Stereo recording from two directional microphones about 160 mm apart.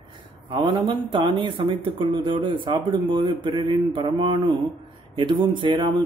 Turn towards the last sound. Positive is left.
turn(degrees=-30)  # may be behind; listen again after turning